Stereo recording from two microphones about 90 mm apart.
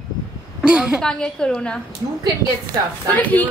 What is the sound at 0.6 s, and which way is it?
Speech, 10° right (ahead or behind).